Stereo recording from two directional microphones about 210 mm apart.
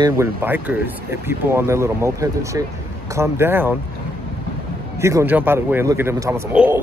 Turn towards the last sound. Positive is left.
turn(degrees=-5)  # may be behind; listen again after turning